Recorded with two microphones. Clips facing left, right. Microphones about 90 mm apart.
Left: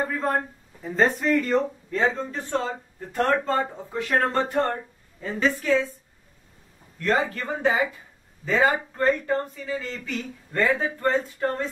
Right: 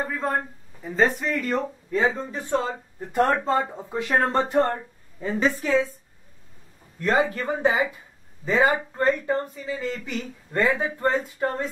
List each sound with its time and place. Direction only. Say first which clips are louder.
0.0 s speech: left 1 dB; centre (ahead or behind); by 4.6 s 20° right (ahead or behind)
4.6 s speech: right 3 dB; 5° right (ahead or behind)
7.0 s speech: right 2 dB; 15° right (ahead or behind)